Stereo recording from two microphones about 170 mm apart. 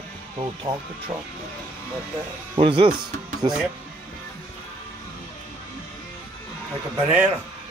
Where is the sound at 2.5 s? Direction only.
30° right (ahead or behind).